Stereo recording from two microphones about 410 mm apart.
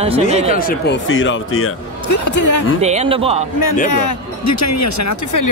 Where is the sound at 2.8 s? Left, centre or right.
Centre.